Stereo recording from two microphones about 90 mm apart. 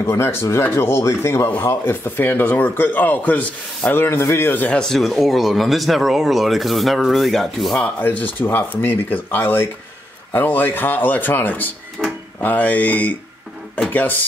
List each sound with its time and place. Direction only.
0.0 s speech: 30° left (ahead or behind)
4.8 s speech: centre (ahead or behind)
7.7 s speech: 15° left (ahead or behind)
12.0 s drawer open or close: 5° right (ahead or behind)
12.4 s speech: 20° left (ahead or behind)